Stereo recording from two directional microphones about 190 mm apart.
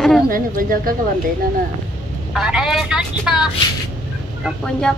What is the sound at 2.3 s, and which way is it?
Speech, 5° right (ahead or behind).